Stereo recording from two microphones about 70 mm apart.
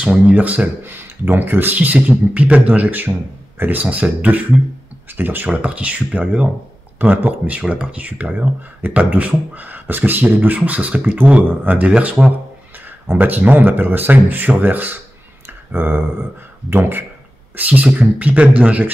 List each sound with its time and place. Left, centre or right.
0.0 s speech: centre
5.5 s speech: centre
13.1 s speech: right
15.4 s a sound: right
17.6 s speech: right